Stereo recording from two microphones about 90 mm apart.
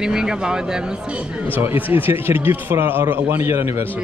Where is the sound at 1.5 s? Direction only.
25° right (ahead or behind).